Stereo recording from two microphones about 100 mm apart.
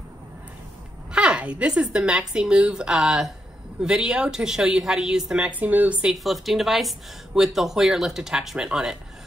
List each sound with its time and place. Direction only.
1.1 s a woman's voice: 10° right (ahead or behind)
6.1 s speech: centre (ahead or behind)